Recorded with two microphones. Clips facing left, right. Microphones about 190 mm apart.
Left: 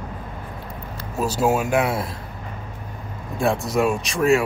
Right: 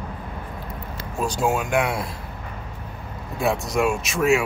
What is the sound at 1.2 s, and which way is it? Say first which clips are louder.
Speech: left 3 dB; 5° left (ahead or behind).